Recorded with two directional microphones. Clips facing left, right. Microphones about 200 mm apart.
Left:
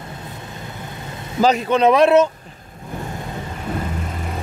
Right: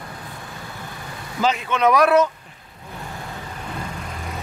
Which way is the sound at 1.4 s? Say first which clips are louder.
Left 5 dB; 40° left (ahead or behind).